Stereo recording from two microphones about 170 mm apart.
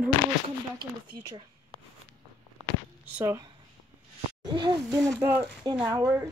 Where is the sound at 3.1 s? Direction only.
15° right (ahead or behind).